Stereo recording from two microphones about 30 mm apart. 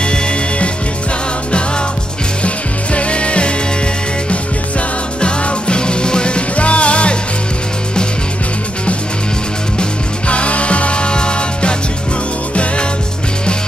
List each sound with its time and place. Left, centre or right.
0.0 s music: left
2.4 s music: left
6.5 s music: left
10.2 s music: left